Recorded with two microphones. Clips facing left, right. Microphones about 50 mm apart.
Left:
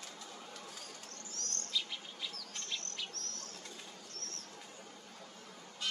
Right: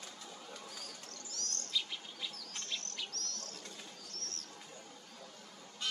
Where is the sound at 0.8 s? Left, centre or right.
Left.